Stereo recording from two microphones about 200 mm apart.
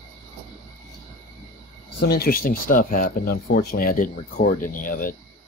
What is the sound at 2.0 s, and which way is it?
Speech, 50° left (ahead or behind).